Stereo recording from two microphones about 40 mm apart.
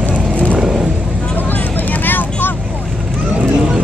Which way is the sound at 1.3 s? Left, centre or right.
Left.